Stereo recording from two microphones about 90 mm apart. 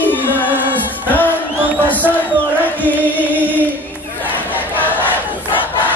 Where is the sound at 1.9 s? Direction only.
20° left (ahead or behind).